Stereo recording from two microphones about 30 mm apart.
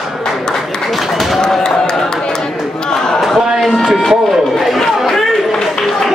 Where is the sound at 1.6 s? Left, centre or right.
Centre.